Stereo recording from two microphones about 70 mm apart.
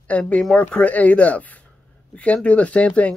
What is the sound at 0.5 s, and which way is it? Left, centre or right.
Speech, centre.